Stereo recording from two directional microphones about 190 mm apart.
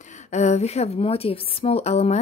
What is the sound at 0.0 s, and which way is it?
A woman's voice, 40° left (ahead or behind).